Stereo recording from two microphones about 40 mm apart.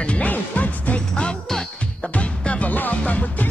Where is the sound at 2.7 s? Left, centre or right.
Left.